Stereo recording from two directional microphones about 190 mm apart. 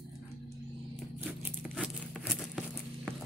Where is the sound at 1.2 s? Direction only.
10° right (ahead or behind).